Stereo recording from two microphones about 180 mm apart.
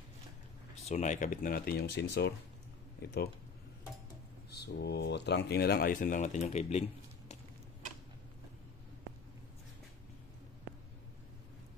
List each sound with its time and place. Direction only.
0.8 s speech: 40° left (ahead or behind); by 3.2 s 65° left (ahead or behind)
4.5 s speech: 65° left (ahead or behind); by 7.3 s 35° left (ahead or behind)